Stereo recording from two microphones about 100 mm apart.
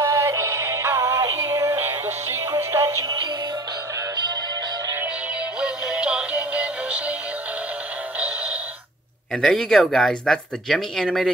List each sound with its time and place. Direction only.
0.0 s synthetic singing: 30° right (ahead or behind)
2.5 s music: 35° right (ahead or behind)
5.6 s synthetic singing: 10° right (ahead or behind)
9.3 s speech: 5° left (ahead or behind)